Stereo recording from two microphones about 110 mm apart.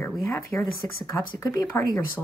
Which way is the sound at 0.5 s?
15° left (ahead or behind).